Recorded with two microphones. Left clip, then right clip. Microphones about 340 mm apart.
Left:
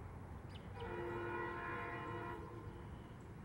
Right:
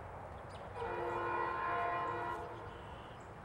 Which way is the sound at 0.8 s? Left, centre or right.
Centre.